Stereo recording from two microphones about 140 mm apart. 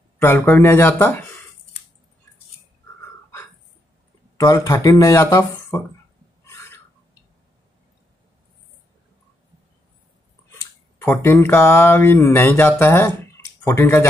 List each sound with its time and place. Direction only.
0.2 s speech: 15° left (ahead or behind)
4.4 s speech: 25° left (ahead or behind)
11.2 s speech: 15° left (ahead or behind)